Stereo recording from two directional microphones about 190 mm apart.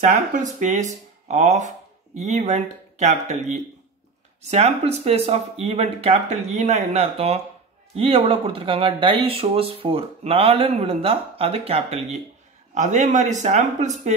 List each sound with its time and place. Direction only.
0.0 s speech: 40° right (ahead or behind)